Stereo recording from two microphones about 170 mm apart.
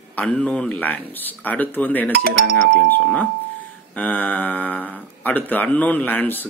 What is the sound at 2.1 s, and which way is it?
Speech, 70° right (ahead or behind).